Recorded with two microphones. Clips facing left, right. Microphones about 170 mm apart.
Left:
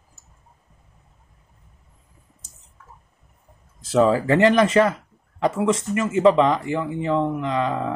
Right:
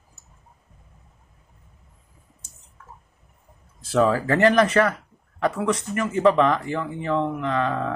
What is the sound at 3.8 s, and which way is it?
Speech, 20° left (ahead or behind).